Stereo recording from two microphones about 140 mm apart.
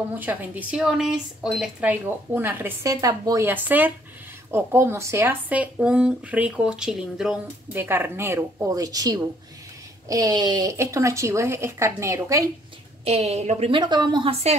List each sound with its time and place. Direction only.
0.1 s a woman's voice: 15° right (ahead or behind)
3.4 s a woman's voice: 15° right (ahead or behind)
7.7 s a woman's voice: 15° right (ahead or behind)
13.0 s a woman's voice: 45° right (ahead or behind)
13.7 s speech: 30° right (ahead or behind)